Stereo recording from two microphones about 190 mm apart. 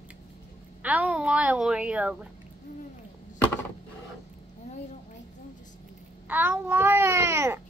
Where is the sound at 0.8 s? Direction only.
5° right (ahead or behind).